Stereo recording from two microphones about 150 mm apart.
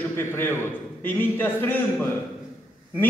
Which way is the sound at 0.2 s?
15° left (ahead or behind).